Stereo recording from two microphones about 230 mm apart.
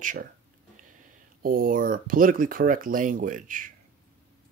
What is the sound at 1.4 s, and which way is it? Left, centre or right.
Speech, right.